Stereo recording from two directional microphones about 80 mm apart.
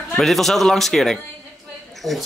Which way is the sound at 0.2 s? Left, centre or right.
Centre.